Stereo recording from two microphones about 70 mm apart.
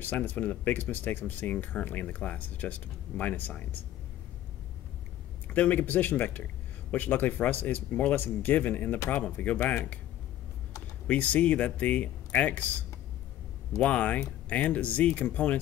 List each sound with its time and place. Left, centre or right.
0.0 s speech: left
5.5 s speech: left
11.1 s speech: left